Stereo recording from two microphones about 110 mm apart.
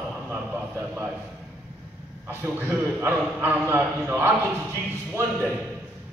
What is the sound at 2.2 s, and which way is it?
A man's voice, 20° right (ahead or behind).